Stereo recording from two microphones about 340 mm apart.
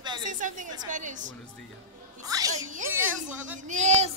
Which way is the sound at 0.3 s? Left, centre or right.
Right.